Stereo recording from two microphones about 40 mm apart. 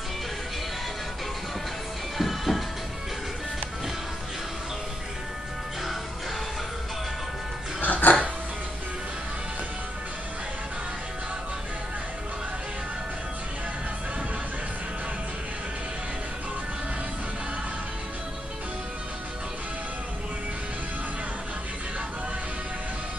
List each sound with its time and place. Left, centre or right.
2.1 s music: centre
7.8 s music: left